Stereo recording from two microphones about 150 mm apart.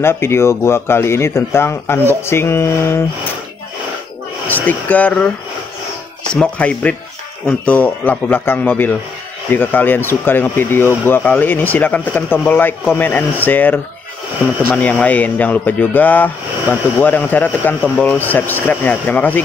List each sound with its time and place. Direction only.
0.0 s speech: 15° left (ahead or behind)
4.5 s speech: 10° left (ahead or behind)
6.3 s speech: 10° left (ahead or behind)